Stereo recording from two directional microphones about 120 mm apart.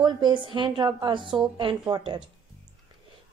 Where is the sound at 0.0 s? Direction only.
40° right (ahead or behind).